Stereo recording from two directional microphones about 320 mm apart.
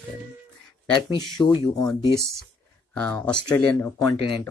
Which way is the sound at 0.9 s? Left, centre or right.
Centre.